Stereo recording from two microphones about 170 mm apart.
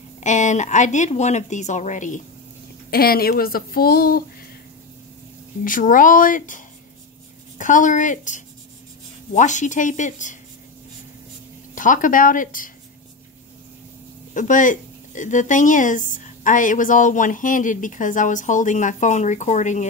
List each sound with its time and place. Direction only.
0.2 s speech: 45° left (ahead or behind)
2.9 s speech: 60° left (ahead or behind)
5.6 s speech: 50° left (ahead or behind)
11.7 s speech: 50° left (ahead or behind)
14.3 s speech: 50° left (ahead or behind)